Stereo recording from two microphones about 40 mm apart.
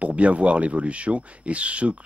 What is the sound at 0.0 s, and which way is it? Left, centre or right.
Speech, right.